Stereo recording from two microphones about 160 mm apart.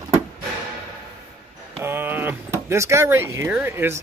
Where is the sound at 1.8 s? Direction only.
15° right (ahead or behind).